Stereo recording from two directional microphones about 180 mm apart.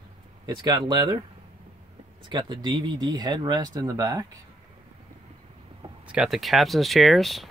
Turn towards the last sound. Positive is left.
turn(degrees=0)  # may be behind; listen again after turning